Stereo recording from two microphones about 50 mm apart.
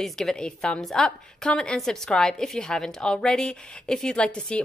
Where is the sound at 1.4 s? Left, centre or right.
Centre.